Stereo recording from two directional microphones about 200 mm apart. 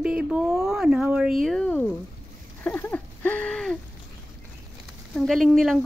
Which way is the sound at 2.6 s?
10° left (ahead or behind).